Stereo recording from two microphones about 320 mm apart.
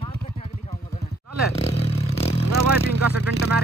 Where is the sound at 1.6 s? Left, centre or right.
Centre.